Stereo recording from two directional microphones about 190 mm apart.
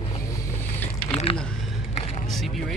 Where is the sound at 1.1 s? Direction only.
30° left (ahead or behind).